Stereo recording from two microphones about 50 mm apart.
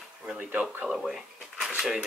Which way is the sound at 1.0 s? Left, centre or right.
Centre.